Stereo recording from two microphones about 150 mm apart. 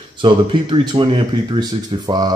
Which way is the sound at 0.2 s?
35° right (ahead or behind).